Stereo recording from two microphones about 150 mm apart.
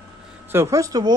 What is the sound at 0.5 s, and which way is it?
Speech, 20° right (ahead or behind).